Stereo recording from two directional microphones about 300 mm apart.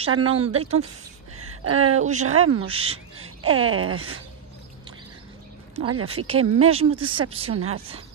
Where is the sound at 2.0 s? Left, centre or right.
Right.